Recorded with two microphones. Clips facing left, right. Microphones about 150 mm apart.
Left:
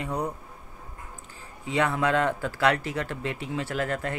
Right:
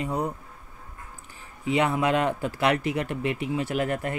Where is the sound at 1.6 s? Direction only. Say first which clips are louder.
Right 2 dB; 15° right (ahead or behind).